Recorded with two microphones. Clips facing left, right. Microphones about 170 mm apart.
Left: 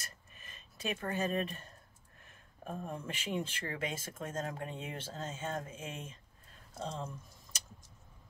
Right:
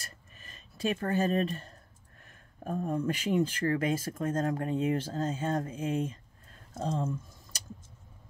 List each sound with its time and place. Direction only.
0.0 s a sound: 35° right (ahead or behind)
2.6 s speech: 45° right (ahead or behind)
6.7 s speech: 45° right (ahead or behind)